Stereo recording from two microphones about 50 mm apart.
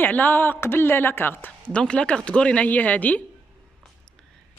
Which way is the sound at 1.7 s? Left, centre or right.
Centre.